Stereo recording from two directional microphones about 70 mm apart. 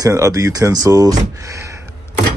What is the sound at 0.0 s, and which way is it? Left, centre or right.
Speech, right.